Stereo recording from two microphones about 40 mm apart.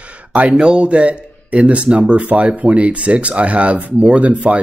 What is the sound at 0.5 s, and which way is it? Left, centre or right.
Speech, centre.